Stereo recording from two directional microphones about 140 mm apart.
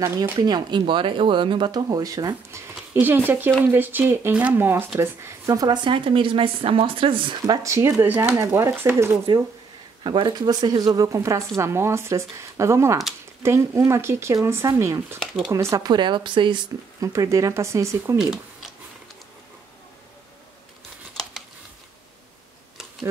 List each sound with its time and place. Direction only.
0.0 s speech: 30° right (ahead or behind)
7.4 s speech: 25° right (ahead or behind)
10.0 s speech: 35° right (ahead or behind)
17.0 s speech: 20° right (ahead or behind)